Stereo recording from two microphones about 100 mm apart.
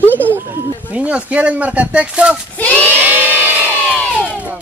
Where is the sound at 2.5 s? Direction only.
15° left (ahead or behind).